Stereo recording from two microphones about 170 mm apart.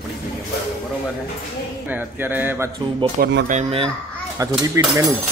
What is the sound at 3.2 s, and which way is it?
Speech, 60° right (ahead or behind).